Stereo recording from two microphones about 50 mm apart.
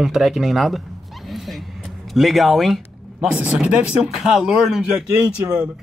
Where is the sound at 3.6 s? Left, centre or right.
Right.